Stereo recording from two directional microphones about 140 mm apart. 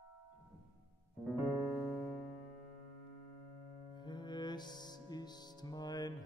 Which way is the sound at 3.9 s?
30° left (ahead or behind).